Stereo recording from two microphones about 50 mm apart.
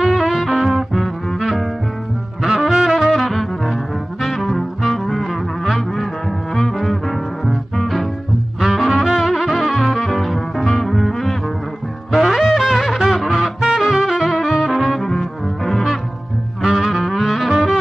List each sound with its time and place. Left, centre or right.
0.0 s music: centre
4.2 s brass instrument: centre
6.5 s music: centre
13.6 s brass instrument: centre
16.6 s music: centre